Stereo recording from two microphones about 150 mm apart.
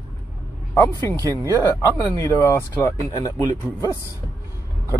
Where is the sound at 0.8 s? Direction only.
15° left (ahead or behind).